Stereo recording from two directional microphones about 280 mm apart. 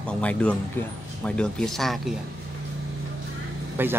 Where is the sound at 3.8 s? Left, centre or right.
Centre.